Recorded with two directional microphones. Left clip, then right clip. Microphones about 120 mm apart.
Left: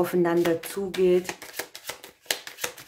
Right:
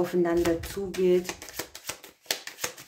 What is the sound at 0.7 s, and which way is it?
Shuffling cards, 25° left (ahead or behind).